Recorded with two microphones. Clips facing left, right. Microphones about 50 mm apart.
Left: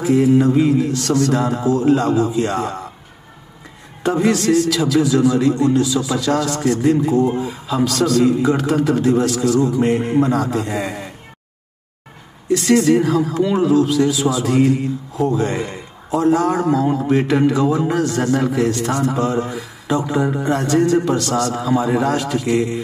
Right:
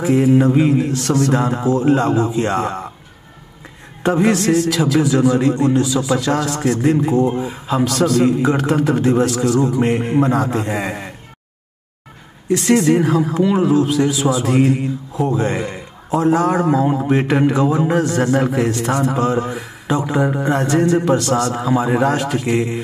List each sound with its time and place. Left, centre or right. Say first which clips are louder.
0.0 s a man's voice: even; right
4.0 s a man's voice: right 1 dB; right
12.4 s a man's voice: even; right
20.0 s a man's voice: right 2 dB; centre